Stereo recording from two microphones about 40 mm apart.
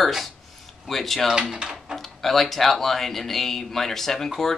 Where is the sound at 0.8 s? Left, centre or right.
Centre.